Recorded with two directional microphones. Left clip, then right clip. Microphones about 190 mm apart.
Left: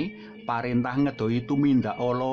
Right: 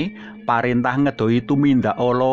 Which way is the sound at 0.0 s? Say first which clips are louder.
Right 7 dB; 25° right (ahead or behind).